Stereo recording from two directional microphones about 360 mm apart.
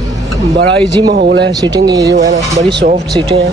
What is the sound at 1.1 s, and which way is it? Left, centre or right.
Speech, right.